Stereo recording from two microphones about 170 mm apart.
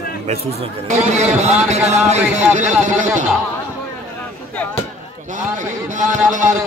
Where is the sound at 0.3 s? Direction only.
40° right (ahead or behind).